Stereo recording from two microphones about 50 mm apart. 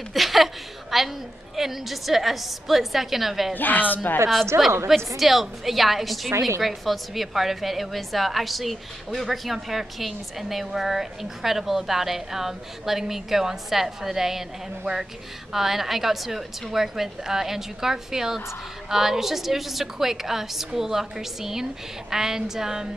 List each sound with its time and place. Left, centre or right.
0.1 s a sound: centre
1.6 s a woman's voice: centre
3.5 s speech: left
4.5 s a woman's voice: right
5.1 s a woman's voice: centre
15.5 s a woman's voice: centre